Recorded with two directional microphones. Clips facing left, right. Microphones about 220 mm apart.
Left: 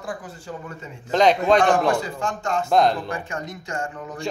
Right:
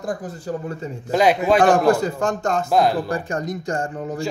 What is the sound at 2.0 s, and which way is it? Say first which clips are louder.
Speech: right 6 dB; 40° right (ahead or behind).